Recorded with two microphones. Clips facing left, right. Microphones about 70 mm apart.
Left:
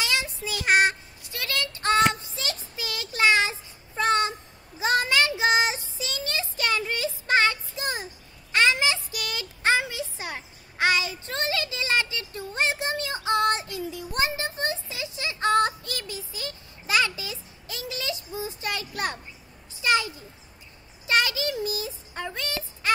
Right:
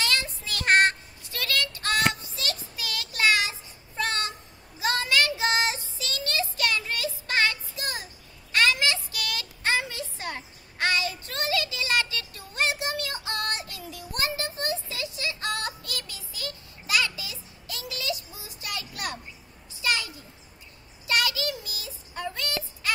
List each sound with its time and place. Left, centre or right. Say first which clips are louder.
0.0 s child singing: left 1 dB; centre
1.3 s child singing: right 1 dB; left
19.8 s a sound: left 5 dB; left
21.1 s child singing: left 3 dB; left